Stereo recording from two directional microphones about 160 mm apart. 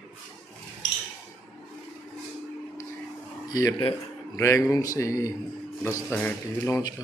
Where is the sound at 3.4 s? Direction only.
20° left (ahead or behind).